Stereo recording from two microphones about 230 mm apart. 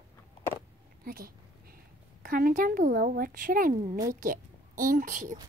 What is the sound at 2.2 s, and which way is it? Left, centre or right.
A woman's voice, right.